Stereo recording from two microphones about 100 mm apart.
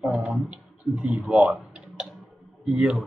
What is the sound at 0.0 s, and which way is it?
Speech, 15° right (ahead or behind).